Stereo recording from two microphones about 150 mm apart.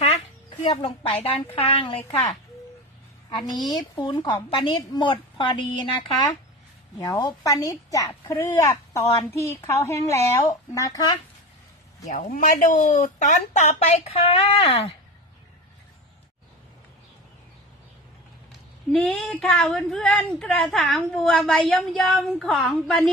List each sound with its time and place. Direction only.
0.7 s a woman's voice: 35° left (ahead or behind)
3.3 s a woman's voice: 30° left (ahead or behind)
7.0 s a woman's voice: 25° left (ahead or behind)
12.1 s speech: 60° left (ahead or behind); by 15.0 s 40° left (ahead or behind)
18.9 s a woman's voice: 5° left (ahead or behind)